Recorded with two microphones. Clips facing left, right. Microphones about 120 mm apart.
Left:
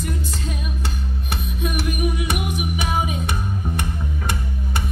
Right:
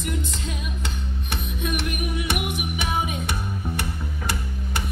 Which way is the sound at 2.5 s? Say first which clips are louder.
Left 3 dB; 35° left (ahead or behind).